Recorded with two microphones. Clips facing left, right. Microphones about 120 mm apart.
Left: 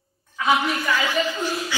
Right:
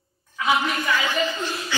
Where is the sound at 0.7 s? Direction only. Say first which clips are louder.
Left 1 dB; 10° left (ahead or behind).